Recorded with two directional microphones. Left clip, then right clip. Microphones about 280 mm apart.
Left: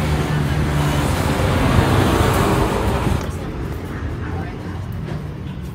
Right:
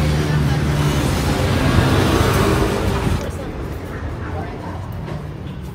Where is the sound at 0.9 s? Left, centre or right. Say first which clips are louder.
Even; left.